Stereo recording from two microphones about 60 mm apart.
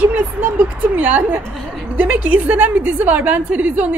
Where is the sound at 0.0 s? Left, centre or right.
Right.